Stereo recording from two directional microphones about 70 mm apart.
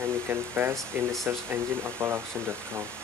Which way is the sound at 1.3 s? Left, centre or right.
Right.